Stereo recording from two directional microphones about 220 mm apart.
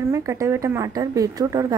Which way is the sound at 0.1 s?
15° right (ahead or behind).